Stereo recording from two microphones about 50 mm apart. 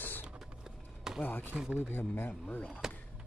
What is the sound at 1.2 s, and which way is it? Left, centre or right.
Speech, left.